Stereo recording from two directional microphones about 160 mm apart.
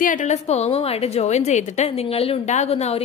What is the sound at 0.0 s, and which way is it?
Speech, 50° left (ahead or behind).